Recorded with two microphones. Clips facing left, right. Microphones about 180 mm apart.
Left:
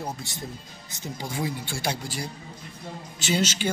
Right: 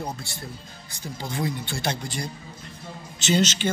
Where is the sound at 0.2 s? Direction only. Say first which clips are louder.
Left 1 dB; 15° left (ahead or behind).